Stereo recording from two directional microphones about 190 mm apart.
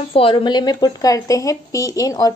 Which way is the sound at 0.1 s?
25° left (ahead or behind).